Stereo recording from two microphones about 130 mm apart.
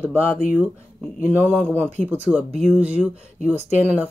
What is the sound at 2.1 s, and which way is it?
Speech, 10° right (ahead or behind).